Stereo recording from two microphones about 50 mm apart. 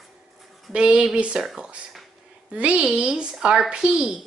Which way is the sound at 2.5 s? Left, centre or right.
Right.